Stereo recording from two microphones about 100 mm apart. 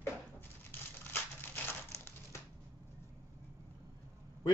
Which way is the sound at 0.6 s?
20° left (ahead or behind).